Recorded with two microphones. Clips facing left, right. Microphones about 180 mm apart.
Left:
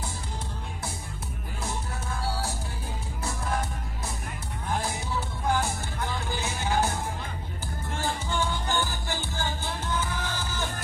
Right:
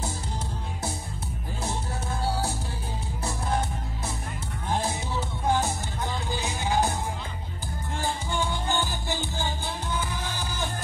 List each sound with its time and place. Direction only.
2.2 s music: 25° right (ahead or behind)
4.6 s music: 25° right (ahead or behind)
8.0 s music: 15° right (ahead or behind)